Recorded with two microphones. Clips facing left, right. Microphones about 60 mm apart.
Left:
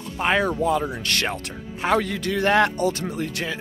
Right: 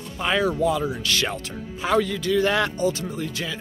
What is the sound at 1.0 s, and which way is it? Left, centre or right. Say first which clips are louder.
Speech: even; left.